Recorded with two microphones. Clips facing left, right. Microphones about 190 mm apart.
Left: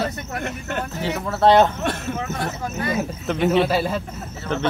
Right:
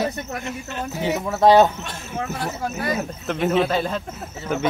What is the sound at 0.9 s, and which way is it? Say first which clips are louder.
Speech: right 4 dB; 15° right (ahead or behind).